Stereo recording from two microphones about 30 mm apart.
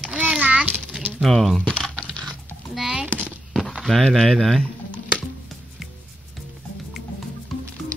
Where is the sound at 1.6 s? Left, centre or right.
Left.